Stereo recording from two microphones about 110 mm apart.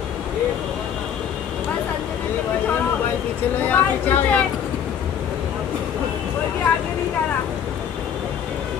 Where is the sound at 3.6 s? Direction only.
15° left (ahead or behind).